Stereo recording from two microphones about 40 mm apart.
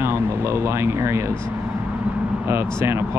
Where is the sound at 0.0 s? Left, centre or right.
Right.